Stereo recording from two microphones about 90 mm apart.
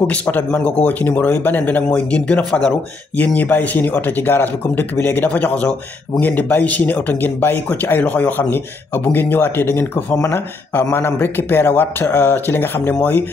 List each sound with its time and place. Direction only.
0.0 s speech: 15° left (ahead or behind)
10.1 s speech: 35° left (ahead or behind)
10.7 s speech: 25° left (ahead or behind)